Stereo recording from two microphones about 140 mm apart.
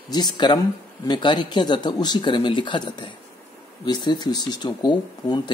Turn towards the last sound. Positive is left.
turn(degrees=30)  # may be behind; listen again after turning